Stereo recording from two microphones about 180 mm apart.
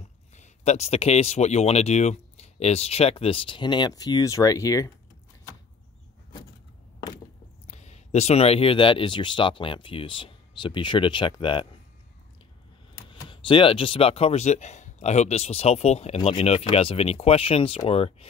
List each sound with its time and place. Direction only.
0.4 s speech: 35° left (ahead or behind); by 4.9 s 20° left (ahead or behind)
7.6 s speech: 40° left (ahead or behind)
13.1 s speech: 30° left (ahead or behind)